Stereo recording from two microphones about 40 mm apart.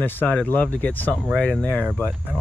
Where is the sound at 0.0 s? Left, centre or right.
Left.